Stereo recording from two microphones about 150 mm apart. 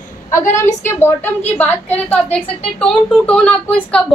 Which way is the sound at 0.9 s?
15° left (ahead or behind).